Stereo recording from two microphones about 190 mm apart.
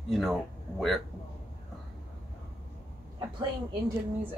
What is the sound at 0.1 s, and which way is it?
Speech, centre (ahead or behind).